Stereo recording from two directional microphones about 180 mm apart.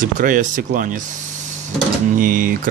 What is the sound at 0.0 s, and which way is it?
Speech, 50° right (ahead or behind).